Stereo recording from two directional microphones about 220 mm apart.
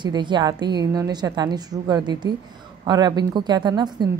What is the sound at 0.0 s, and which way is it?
A woman's voice, 20° right (ahead or behind).